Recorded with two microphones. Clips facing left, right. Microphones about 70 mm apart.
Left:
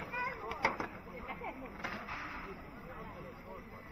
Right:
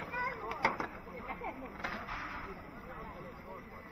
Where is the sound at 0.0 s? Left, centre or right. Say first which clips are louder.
Right 2 dB; right.